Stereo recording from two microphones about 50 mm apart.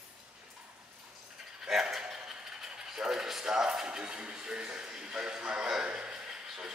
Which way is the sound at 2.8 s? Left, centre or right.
Centre.